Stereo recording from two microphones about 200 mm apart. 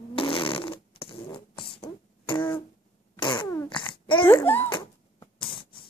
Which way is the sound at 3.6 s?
25° left (ahead or behind).